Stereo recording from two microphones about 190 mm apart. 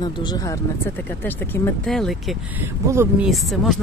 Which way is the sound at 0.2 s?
20° left (ahead or behind).